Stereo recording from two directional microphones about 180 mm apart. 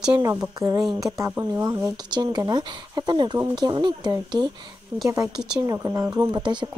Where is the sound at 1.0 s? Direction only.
15° right (ahead or behind).